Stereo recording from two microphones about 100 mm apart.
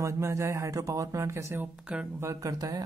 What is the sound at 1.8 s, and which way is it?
Speech, 10° right (ahead or behind).